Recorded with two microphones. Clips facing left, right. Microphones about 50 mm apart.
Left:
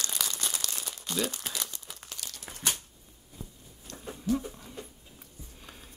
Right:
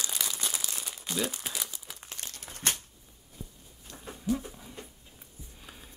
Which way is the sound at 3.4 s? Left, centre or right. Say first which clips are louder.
Even; left.